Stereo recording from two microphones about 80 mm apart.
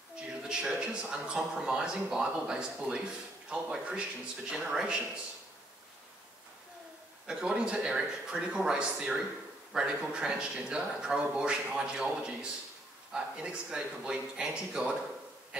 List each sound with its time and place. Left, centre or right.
0.1 s speech: centre
7.2 s speech: centre